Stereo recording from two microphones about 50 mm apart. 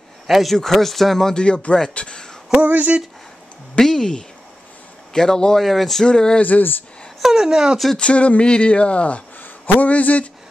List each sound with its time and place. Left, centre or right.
0.3 s speech: centre
2.6 s speech: right
3.8 s speech: centre
6.0 s speech: centre
6.4 s speech: left
7.2 s speech: centre
8.0 s speech: left